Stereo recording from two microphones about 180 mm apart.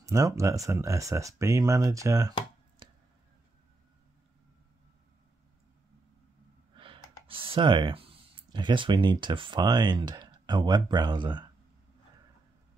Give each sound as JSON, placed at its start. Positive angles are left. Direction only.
{"t": 0.0, "sound": "speech", "side_deg": -15}
{"t": 6.7, "sound": "speech", "side_deg": -30}